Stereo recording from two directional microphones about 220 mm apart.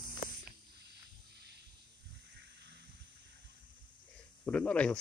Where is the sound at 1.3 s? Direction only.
50° right (ahead or behind).